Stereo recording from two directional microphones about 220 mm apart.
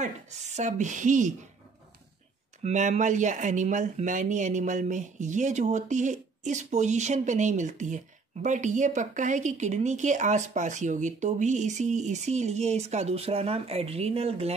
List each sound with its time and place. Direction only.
0.0 s speech: 30° right (ahead or behind)
2.6 s speech: 30° right (ahead or behind)